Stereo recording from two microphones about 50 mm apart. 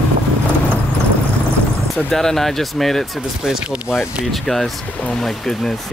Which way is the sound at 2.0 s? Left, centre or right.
Centre.